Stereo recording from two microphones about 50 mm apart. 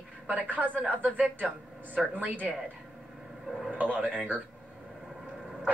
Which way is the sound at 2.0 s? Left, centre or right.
Centre.